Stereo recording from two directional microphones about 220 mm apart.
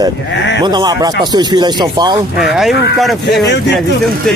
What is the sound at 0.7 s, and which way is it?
Speech, 20° right (ahead or behind).